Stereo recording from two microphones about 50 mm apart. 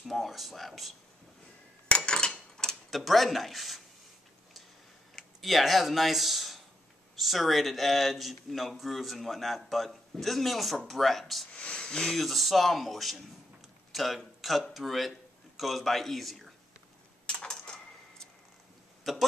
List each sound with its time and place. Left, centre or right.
0.0 s speech: centre
2.0 s cutlery: centre
2.9 s speech: centre
5.1 s speech: centre
11.5 s a sound: left
12.2 s a man's voice: centre
17.3 s a sound: centre
19.1 s speech: centre